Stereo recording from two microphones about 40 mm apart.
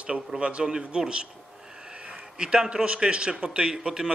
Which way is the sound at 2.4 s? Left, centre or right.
Right.